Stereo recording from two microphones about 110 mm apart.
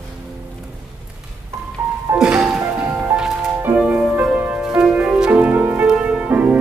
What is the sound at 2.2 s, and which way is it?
Music, 10° right (ahead or behind).